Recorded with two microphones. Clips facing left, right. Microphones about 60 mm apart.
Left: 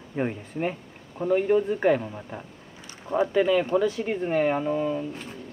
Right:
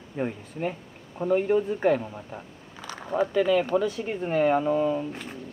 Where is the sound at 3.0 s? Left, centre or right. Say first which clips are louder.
Left 1 dB; left.